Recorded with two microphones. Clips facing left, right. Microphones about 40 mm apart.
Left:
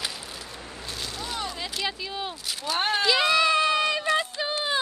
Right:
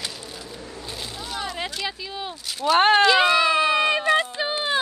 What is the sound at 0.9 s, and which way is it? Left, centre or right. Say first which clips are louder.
Boat: even; centre.